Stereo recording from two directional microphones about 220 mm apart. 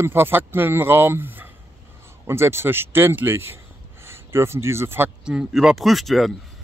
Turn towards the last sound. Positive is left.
turn(degrees=0)  # may be behind; listen again after turning